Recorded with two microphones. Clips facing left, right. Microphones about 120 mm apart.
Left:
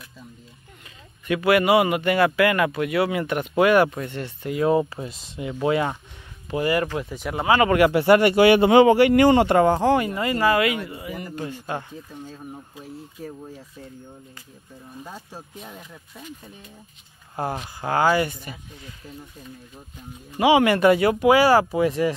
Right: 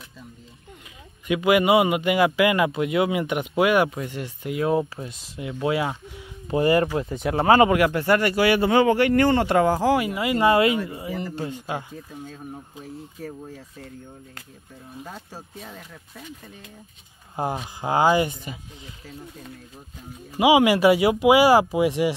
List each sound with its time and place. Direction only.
1.2 s speech: 15° right (ahead or behind)
6.5 s speech: 30° right (ahead or behind)
7.9 s speech: 15° left (ahead or behind)
9.6 s speech: 5° right (ahead or behind)
10.4 s speech: 25° right (ahead or behind)
11.4 s speech: 15° right (ahead or behind)
12.8 s speech: 10° left (ahead or behind)
15.0 s speech: 5° left (ahead or behind)
17.4 s speech: 15° right (ahead or behind)
20.3 s speech: 10° right (ahead or behind)